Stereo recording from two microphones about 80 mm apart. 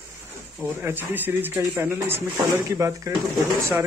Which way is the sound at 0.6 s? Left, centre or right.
Right.